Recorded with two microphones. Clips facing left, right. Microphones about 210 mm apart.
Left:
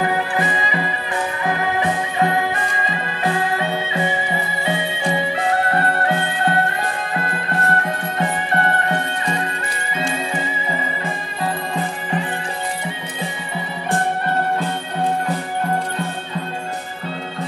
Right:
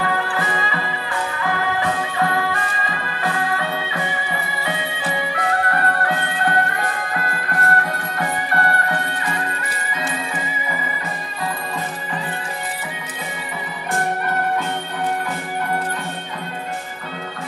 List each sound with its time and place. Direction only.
0.0 s music: 20° left (ahead or behind)